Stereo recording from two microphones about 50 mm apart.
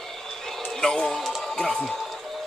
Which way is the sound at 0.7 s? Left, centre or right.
Centre.